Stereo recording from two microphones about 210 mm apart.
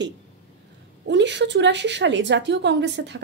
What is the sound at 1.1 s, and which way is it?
A woman's voice, 55° right (ahead or behind).